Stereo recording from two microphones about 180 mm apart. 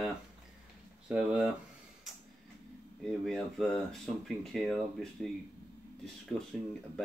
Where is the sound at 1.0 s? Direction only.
5° right (ahead or behind).